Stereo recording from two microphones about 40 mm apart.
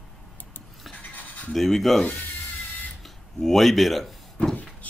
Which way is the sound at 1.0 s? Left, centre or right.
Left.